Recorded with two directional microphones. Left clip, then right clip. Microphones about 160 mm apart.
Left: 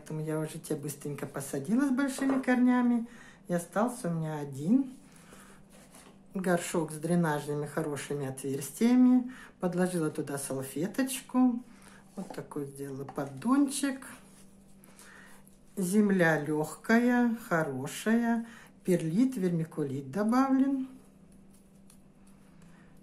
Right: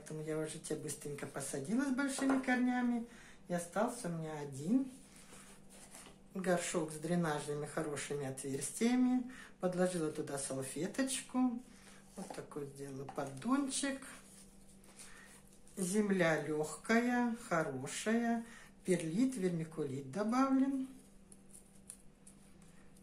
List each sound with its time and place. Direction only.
0.0 s speech: 40° left (ahead or behind)
3.4 s speech: 50° left (ahead or behind)
6.3 s speech: 40° left (ahead or behind)
13.1 s speech: 40° left (ahead or behind)
15.7 s speech: 40° left (ahead or behind)